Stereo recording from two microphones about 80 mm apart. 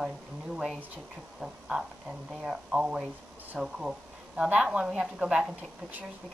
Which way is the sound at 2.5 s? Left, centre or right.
Centre.